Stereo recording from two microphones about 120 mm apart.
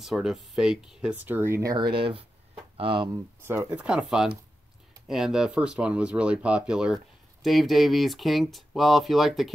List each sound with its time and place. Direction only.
0.0 s speech: centre (ahead or behind); by 1.9 s 30° right (ahead or behind)
2.0 s speech: 45° right (ahead or behind)
3.4 s speech: 20° right (ahead or behind)
3.8 s speech: 5° right (ahead or behind)